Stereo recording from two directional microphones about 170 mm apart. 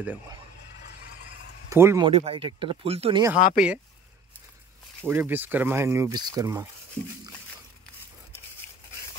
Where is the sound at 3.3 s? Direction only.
50° left (ahead or behind).